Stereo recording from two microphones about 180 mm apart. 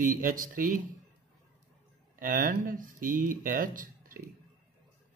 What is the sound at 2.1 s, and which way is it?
Speech, 50° right (ahead or behind).